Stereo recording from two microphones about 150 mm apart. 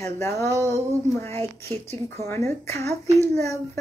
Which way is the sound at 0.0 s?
20° left (ahead or behind).